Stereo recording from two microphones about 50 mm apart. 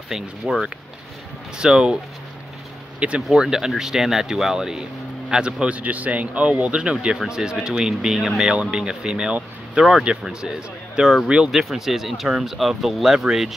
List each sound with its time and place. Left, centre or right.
0.1 s speech: centre
3.3 s speech: centre
11.5 s speech: centre